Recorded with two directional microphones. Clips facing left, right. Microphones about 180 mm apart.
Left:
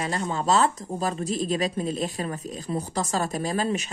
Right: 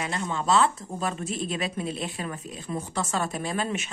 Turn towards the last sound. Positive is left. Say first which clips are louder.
# left 3 dB
turn(degrees=35)  # may be behind; listen again after turning